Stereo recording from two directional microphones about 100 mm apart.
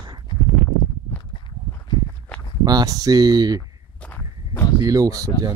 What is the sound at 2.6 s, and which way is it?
Speech, 40° right (ahead or behind).